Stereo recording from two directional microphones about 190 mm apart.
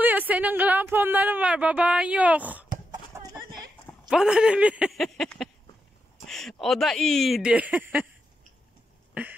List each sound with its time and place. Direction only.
0.0 s speech: 10° right (ahead or behind)
3.2 s chicken: 20° right (ahead or behind)
4.1 s speech: 5° right (ahead or behind)